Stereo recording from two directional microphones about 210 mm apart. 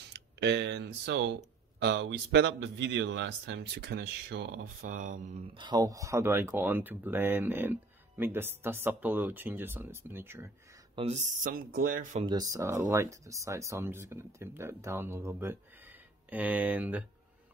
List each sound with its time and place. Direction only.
0.1 s speech: 55° right (ahead or behind); by 10.5 s 10° right (ahead or behind)
11.0 s speech: 30° right (ahead or behind)
12.3 s speech: 15° right (ahead or behind)